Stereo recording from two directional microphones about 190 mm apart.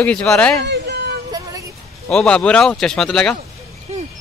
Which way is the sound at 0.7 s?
60° right (ahead or behind).